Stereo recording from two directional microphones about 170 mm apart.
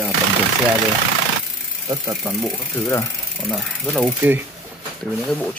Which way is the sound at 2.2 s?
10° right (ahead or behind).